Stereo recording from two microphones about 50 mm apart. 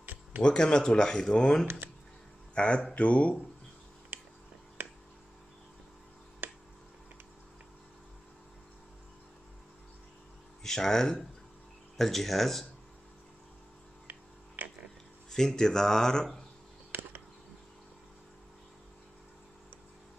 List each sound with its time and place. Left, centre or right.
0.0 s music: right
0.4 s speech: centre
6.4 s finger snapping: right
10.6 s speech: centre
14.6 s a sound: right
15.3 s speech: centre